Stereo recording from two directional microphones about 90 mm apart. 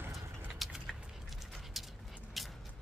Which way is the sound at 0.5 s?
Centre (ahead or behind).